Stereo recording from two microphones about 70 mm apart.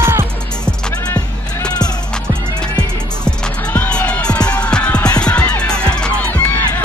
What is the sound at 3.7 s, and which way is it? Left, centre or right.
Music, left.